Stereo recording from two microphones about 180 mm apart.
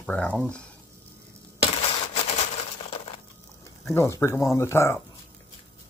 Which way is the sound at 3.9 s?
15° left (ahead or behind).